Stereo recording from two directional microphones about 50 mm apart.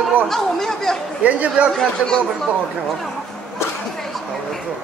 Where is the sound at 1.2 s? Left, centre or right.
Right.